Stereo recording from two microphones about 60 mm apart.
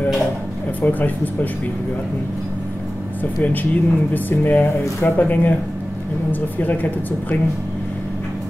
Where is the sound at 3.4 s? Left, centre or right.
Left.